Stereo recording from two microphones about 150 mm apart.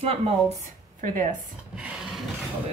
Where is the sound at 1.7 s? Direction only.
5° right (ahead or behind).